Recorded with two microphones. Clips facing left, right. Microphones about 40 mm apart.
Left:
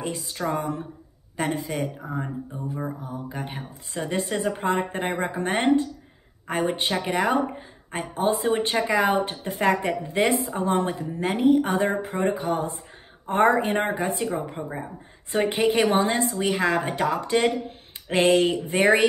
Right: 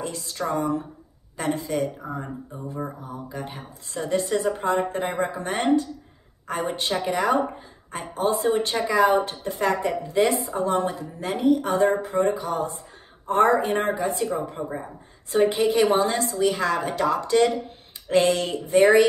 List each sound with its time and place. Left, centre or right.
0.0 s a woman's voice: left
2.0 s speech: centre
2.5 s mantra: centre
3.1 s a woman's voice: left